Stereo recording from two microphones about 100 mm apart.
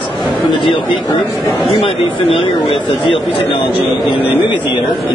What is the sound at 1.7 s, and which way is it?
Speech, 70° left (ahead or behind).